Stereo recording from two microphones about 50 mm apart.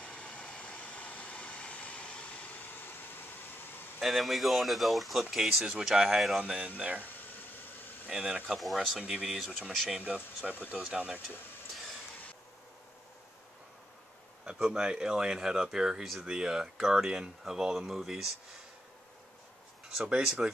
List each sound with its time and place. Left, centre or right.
0.0 s vehicle: left
4.0 s speech: centre
6.4 s speech: right
8.1 s speech: centre
8.5 s speech: centre
10.0 s speech: right
10.7 s speech: centre
14.4 s speech: centre
20.0 s speech: centre